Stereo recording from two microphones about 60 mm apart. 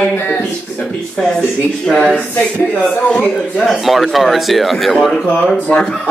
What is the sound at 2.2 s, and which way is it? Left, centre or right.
Speech, left.